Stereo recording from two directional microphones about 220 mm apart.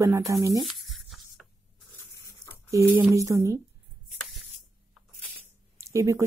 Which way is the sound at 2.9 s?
10° right (ahead or behind).